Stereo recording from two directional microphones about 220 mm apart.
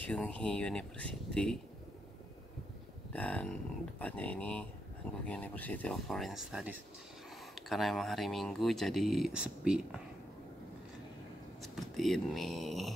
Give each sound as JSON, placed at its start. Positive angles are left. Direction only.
{"t": 0.1, "sound": "speech", "side_deg": 5}
{"t": 3.1, "sound": "speech", "side_deg": 5}
{"t": 11.6, "sound": "speech", "side_deg": 0}